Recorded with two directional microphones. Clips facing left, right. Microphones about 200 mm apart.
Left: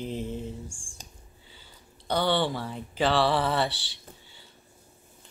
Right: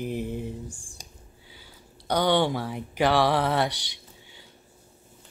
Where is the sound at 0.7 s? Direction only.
40° right (ahead or behind).